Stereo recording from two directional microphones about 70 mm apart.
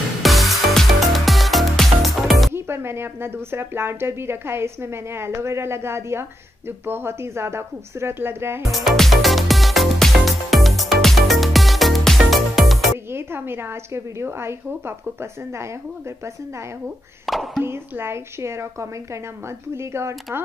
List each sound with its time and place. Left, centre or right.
0.2 s music: centre
2.5 s a woman's voice: right
8.7 s music: centre
13.1 s a woman's voice: right
17.3 s speech: centre
17.6 s a woman's voice: right